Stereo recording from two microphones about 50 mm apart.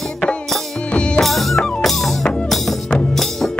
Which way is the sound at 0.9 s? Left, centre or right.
Left.